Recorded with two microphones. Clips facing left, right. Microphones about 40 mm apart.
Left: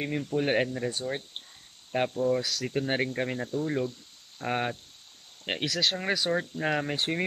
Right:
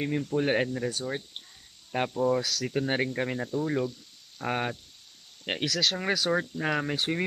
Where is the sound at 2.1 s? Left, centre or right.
Centre.